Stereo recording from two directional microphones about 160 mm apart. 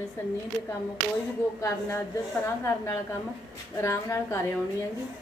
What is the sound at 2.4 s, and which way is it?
A woman's voice, 20° left (ahead or behind).